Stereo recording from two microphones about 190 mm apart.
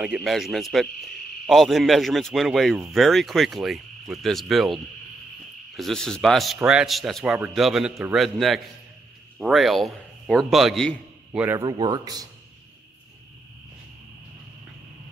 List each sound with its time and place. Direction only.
0.0 s speech: centre (ahead or behind)
5.8 s a man's voice: centre (ahead or behind)
11.4 s a man's voice: 15° right (ahead or behind)